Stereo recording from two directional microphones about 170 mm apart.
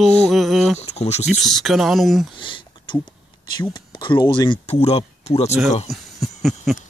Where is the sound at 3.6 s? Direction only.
25° left (ahead or behind).